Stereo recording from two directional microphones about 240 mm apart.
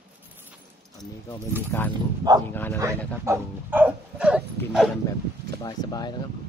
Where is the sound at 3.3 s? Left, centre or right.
Centre.